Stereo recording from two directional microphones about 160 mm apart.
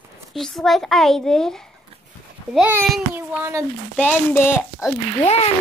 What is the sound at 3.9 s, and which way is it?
Speech, 10° left (ahead or behind).